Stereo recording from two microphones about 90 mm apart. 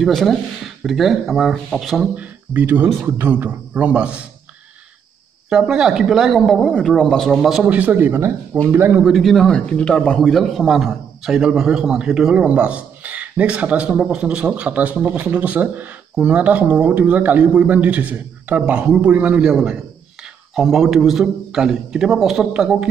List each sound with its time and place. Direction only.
0.0 s a man's voice: 5° left (ahead or behind)
2.1 s speech: 20° right (ahead or behind)
5.5 s a man's voice: 5° right (ahead or behind)
7.6 s a man's voice: 15° right (ahead or behind)
9.1 s a man's voice: centre (ahead or behind)